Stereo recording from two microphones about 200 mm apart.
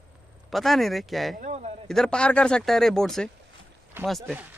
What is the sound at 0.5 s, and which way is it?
Speech, centre (ahead or behind).